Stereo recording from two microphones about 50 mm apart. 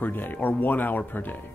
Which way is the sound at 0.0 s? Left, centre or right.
Left.